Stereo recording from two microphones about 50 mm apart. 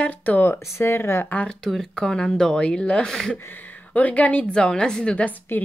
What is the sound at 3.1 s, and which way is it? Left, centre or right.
Speech, centre.